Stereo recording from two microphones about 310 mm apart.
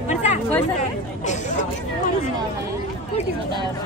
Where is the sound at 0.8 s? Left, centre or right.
Left.